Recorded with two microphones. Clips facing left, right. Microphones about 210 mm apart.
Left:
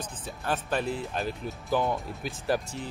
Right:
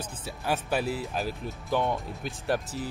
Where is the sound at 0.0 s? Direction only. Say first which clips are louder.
Right 1 dB; 10° right (ahead or behind).